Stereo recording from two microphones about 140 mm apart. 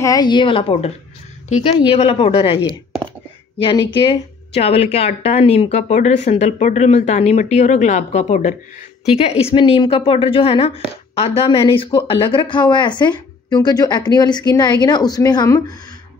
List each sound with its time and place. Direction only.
0.0 s a woman's voice: 30° left (ahead or behind)